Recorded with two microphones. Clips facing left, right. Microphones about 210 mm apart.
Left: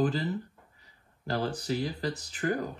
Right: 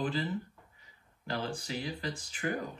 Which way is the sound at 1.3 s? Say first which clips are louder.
Left 6 dB; 40° left (ahead or behind).